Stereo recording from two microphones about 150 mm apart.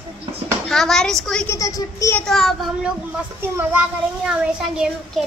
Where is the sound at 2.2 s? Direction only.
5° left (ahead or behind).